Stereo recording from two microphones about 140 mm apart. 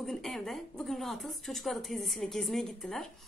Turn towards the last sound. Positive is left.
turn(degrees=0)  # may be behind; listen again after turning